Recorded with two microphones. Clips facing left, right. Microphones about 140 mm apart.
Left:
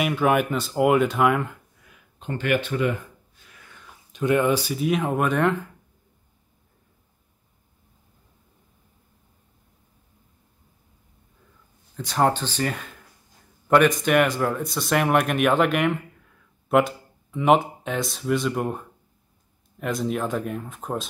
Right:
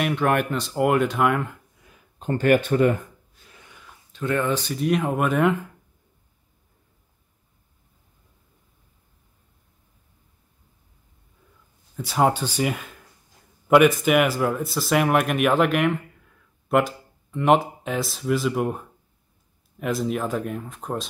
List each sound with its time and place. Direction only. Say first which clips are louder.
0.0 s speech: left 1 dB; 5° left (ahead or behind)
2.1 s speech: right 5 dB; 40° right (ahead or behind)
4.1 s speech: left 3 dB; 15° left (ahead or behind); by 5.6 s centre (ahead or behind)
12.0 s speech: right 1 dB; 10° right (ahead or behind)